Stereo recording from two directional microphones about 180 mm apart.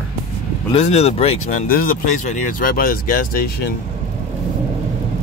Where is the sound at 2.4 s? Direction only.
50° left (ahead or behind).